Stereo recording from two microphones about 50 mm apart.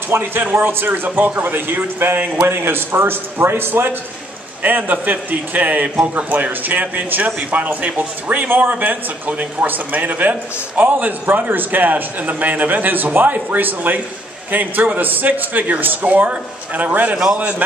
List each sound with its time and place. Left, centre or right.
0.1 s a man's voice: right
4.6 s a man's voice: right